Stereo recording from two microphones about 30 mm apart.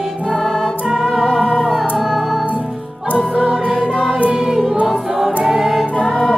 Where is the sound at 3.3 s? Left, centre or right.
Right.